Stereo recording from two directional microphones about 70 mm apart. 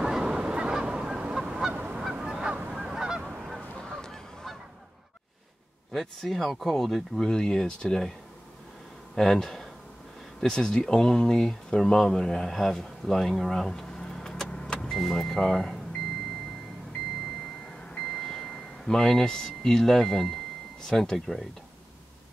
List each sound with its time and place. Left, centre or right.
0.0 s goose: centre
5.9 s speech: centre
9.1 s speech: centre
17.9 s a sound: centre
20.8 s speech: centre